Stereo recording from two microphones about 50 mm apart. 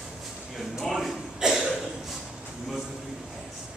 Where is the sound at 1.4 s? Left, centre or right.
Centre.